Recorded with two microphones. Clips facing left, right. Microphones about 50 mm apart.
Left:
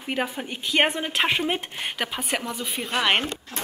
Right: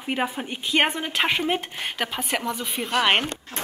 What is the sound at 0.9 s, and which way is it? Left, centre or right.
Speech, centre.